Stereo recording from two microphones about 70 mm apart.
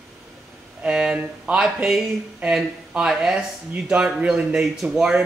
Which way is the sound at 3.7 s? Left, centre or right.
Centre.